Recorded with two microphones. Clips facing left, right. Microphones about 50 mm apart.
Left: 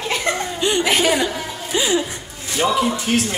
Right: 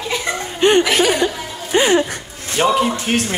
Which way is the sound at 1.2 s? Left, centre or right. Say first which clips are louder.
Right 1 dB; centre.